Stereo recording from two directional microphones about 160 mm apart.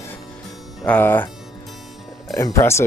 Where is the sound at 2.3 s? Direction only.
20° left (ahead or behind).